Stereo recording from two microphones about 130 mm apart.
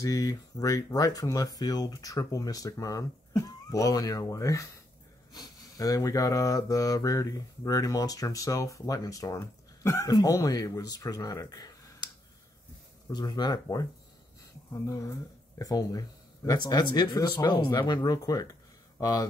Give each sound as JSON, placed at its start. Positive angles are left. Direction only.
{"t": 0.0, "sound": "speech", "side_deg": 30}
{"t": 13.1, "sound": "speech", "side_deg": 30}